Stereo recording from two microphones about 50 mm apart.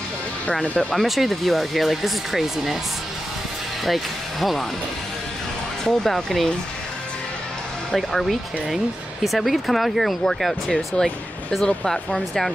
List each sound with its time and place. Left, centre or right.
0.5 s speech: left
0.9 s speech: centre
3.8 s speech: centre
5.9 s speech: centre
7.9 s speech: centre
10.2 s speech: centre